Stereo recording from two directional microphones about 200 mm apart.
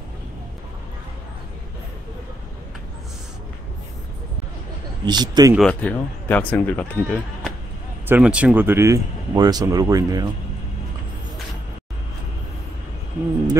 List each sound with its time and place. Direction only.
5.0 s speech: 20° right (ahead or behind)
5.7 s speech: 10° left (ahead or behind)
8.1 s speech: 5° right (ahead or behind)